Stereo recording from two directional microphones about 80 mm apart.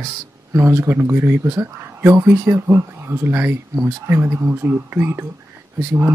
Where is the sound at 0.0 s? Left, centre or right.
Right.